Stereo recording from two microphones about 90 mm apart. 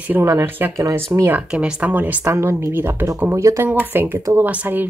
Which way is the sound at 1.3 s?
15° right (ahead or behind).